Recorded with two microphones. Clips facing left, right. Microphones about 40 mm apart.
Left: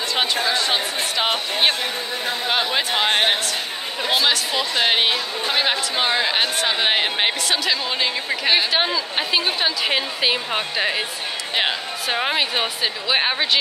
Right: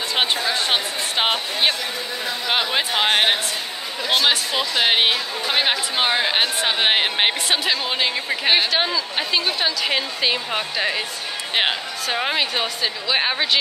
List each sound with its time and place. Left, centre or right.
0.1 s a sound: right
4.7 s speech: centre
8.3 s speech: centre
8.7 s a woman's voice: centre
12.1 s a woman's voice: centre